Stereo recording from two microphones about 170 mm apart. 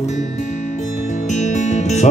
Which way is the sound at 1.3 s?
45° left (ahead or behind).